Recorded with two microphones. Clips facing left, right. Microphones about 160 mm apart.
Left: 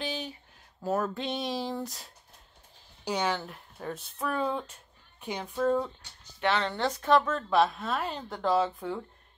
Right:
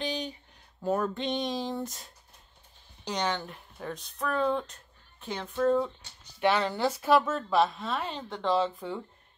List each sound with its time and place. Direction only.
0.0 s a sound: 5° left (ahead or behind)
0.8 s speech: centre (ahead or behind)
6.4 s speech: 10° right (ahead or behind)